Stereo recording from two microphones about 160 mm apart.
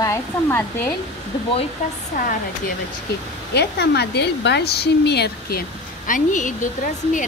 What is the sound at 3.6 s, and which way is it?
A woman's voice, 90° left.